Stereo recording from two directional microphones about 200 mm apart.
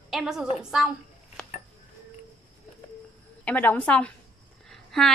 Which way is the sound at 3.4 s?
10° left (ahead or behind).